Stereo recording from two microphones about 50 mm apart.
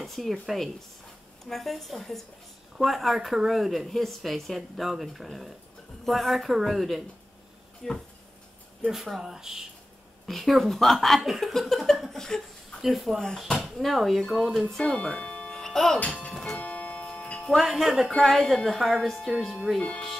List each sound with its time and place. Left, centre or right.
0.0 s speech: centre
7.8 s speech: centre
8.9 s speech: centre
14.8 s speech: centre
16.0 s speech: left
16.5 s tick-tock: left
17.5 s speech: centre
19.8 s speech: centre